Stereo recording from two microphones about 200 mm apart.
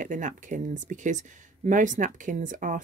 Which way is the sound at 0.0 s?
40° right (ahead or behind).